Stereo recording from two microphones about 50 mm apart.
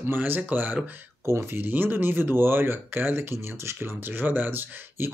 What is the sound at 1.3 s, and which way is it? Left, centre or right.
Speech, right.